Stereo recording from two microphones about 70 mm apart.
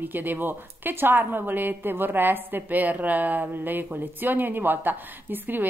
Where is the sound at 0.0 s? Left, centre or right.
Right.